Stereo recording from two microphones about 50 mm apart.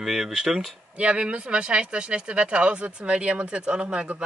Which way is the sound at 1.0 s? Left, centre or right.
Right.